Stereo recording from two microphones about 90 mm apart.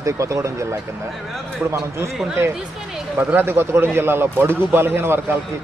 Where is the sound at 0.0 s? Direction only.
35° right (ahead or behind).